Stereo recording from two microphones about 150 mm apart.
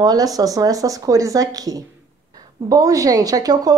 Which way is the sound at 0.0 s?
25° right (ahead or behind).